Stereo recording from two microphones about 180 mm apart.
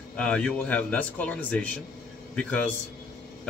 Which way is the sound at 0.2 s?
5° left (ahead or behind).